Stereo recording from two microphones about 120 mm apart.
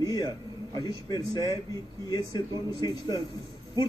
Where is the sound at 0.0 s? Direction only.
30° left (ahead or behind).